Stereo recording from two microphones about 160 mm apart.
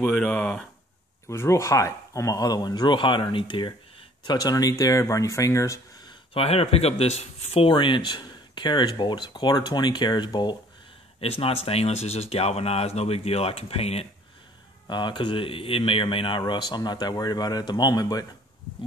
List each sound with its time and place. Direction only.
0.0 s speech: 5° left (ahead or behind)
1.2 s speech: 15° left (ahead or behind)
6.3 s speech: 40° left (ahead or behind)
14.9 s speech: 30° left (ahead or behind)